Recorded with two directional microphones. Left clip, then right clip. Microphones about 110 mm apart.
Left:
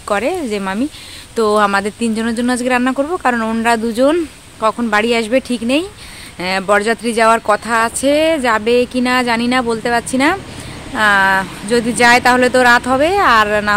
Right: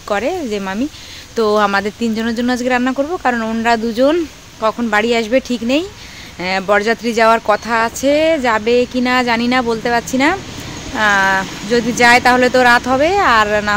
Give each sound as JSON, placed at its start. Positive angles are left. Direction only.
{"t": 0.1, "sound": "speech", "side_deg": 25}